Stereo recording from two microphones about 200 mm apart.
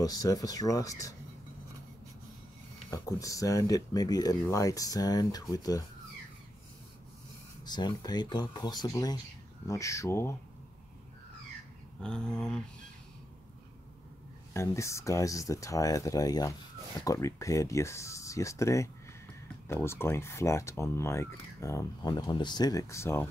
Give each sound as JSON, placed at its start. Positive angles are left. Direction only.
{"t": 0.0, "sound": "speech", "side_deg": 20}
{"t": 2.9, "sound": "speech", "side_deg": 15}
{"t": 7.6, "sound": "speech", "side_deg": 20}
{"t": 12.0, "sound": "speech", "side_deg": 5}
{"t": 14.5, "sound": "speech", "side_deg": 15}